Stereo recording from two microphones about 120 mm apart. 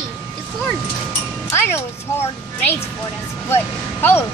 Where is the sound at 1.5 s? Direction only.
20° left (ahead or behind).